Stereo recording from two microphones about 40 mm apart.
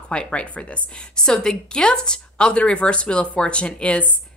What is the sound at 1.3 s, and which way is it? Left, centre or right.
A woman's voice, centre.